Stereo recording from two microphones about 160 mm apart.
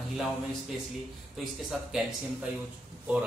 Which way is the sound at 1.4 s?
Centre (ahead or behind).